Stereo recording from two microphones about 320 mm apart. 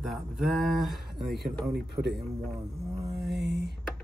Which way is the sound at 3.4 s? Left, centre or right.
Right.